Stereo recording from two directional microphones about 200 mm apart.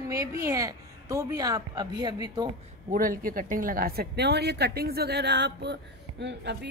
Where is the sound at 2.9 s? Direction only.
45° right (ahead or behind).